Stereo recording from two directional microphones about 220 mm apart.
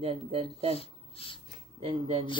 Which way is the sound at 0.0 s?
25° right (ahead or behind).